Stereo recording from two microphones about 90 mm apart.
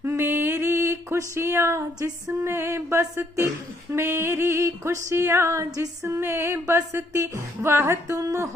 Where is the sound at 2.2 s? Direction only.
30° right (ahead or behind).